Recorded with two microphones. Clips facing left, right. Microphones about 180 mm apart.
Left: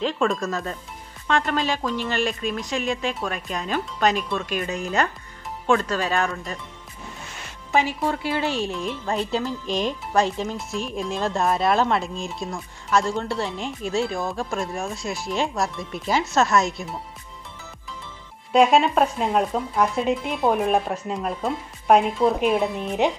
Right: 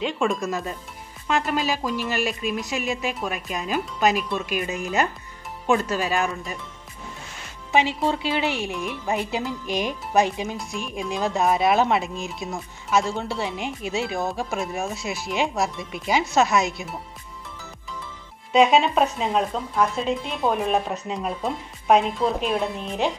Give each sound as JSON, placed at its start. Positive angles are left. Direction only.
{"t": 0.0, "sound": "speech", "side_deg": -5}
{"t": 7.7, "sound": "speech", "side_deg": -20}
{"t": 11.0, "sound": "speech", "side_deg": 0}
{"t": 13.8, "sound": "speech", "side_deg": -20}
{"t": 15.1, "sound": "speech", "side_deg": 0}
{"t": 18.5, "sound": "speech", "side_deg": 0}
{"t": 22.2, "sound": "speech", "side_deg": 15}